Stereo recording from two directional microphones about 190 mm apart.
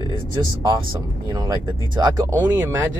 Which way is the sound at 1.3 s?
20° right (ahead or behind).